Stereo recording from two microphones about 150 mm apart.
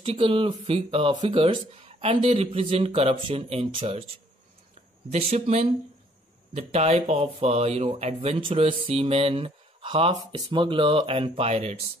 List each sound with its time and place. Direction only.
0.0 s speech: 40° right (ahead or behind)
5.1 s speech: 45° right (ahead or behind)